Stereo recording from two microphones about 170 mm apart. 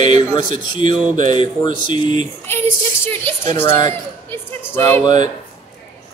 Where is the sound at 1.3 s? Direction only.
30° left (ahead or behind).